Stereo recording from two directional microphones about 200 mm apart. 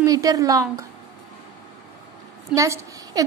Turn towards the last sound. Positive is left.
turn(degrees=-15)  # may be behind; listen again after turning